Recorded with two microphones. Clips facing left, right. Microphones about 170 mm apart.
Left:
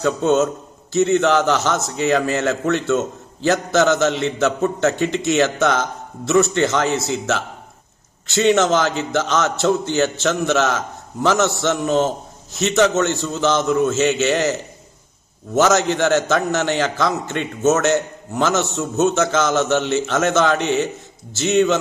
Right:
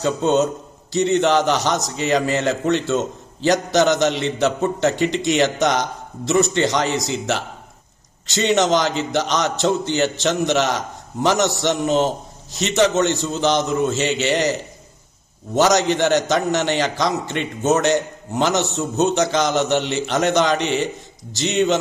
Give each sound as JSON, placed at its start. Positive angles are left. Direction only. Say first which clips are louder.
{"t": 0.0, "sound": "a man's voice", "louder": "left 1 dB", "side_deg": -20}
{"t": 15.6, "sound": "a man's voice", "louder": "even", "side_deg": -15}